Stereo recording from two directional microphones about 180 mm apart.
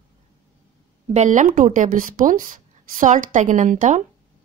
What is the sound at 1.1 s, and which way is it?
Speech, 40° right (ahead or behind).